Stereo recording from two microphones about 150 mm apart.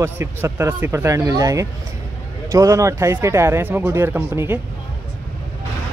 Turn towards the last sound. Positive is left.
turn(degrees=-15)  # may be behind; listen again after turning